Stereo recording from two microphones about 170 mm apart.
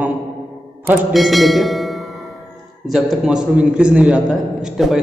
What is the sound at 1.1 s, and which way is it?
A man's voice, centre (ahead or behind).